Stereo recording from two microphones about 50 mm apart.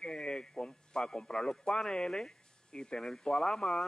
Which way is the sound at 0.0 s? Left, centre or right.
Centre.